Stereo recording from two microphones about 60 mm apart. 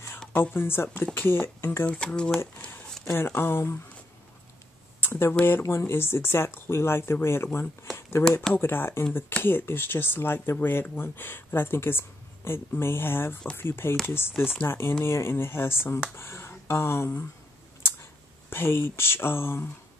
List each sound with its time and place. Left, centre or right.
0.3 s speech: left
1.9 s speech: centre
3.1 s speech: left
5.0 s speech: left
5.6 s speech: left
5.9 s speech: left
7.4 s speech: left
18.5 s speech: left